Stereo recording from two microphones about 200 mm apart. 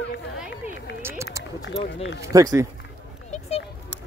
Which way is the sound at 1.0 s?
15° right (ahead or behind).